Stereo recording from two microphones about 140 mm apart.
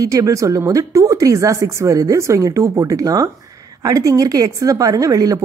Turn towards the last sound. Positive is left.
turn(degrees=-25)  # may be behind; listen again after turning